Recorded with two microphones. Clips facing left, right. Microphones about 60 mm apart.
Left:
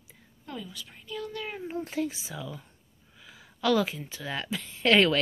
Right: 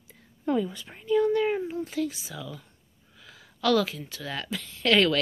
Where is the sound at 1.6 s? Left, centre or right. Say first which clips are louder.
Right 1 dB; left.